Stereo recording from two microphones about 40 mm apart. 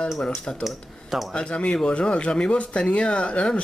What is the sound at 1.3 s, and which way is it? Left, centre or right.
Speech, left.